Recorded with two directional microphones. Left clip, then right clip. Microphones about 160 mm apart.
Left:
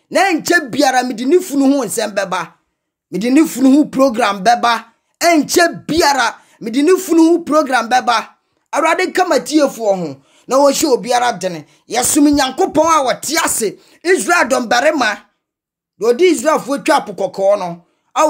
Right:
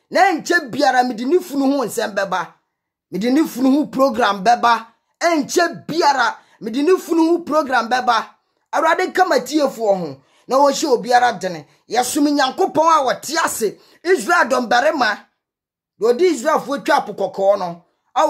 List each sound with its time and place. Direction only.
0.1 s speech: 30° left (ahead or behind)